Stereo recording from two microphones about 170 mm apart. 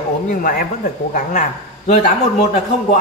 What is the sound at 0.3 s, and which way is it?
A man's voice, 55° left (ahead or behind).